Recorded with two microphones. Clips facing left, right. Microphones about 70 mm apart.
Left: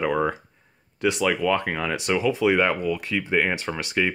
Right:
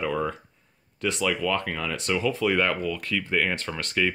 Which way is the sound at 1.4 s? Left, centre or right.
Centre.